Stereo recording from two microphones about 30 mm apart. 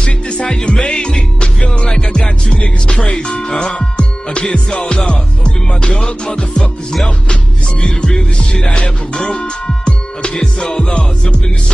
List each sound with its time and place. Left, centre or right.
0.0 s music: left
2.9 s speech: left
3.5 s music: left
7.8 s music: left